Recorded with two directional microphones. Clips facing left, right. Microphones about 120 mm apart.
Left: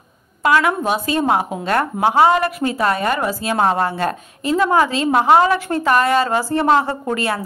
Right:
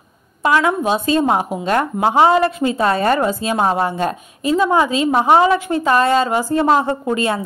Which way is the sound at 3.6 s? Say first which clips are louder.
Left 1 dB; 10° right (ahead or behind).